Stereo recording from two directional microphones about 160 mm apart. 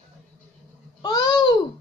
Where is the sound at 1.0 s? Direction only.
25° left (ahead or behind).